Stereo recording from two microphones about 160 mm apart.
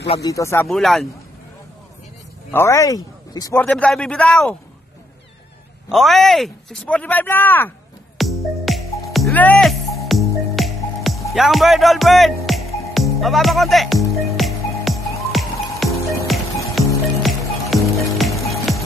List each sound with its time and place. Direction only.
0.2 s speech: 20° left (ahead or behind)
0.7 s speech: centre (ahead or behind)
2.5 s speech: 20° left (ahead or behind)
3.6 s speech: 5° left (ahead or behind)
5.9 s speech: centre (ahead or behind)
8.2 s music: centre (ahead or behind)
11.3 s speech: centre (ahead or behind)
12.4 s music: centre (ahead or behind)